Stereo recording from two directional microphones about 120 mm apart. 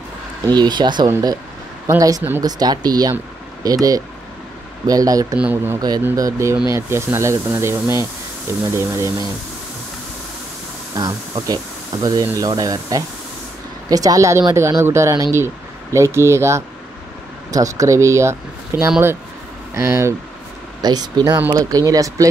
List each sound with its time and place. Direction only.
0.5 s speech: 35° right (ahead or behind)
5.4 s speech: 15° right (ahead or behind)
6.1 s speech: 25° right (ahead or behind)
11.0 s speech: 30° right (ahead or behind)
20.8 s speech: 35° right (ahead or behind)